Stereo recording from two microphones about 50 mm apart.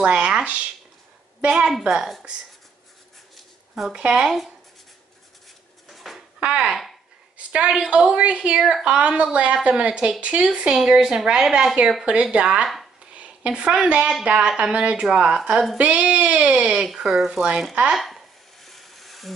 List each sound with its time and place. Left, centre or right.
0.0 s a woman's voice: centre
1.7 s a woman's voice: centre
4.1 s speech: centre
5.9 s a sound: centre
6.4 s a woman's voice: centre
16.8 s speech: centre
17.4 s a woman's voice: centre
17.9 s sizzle: centre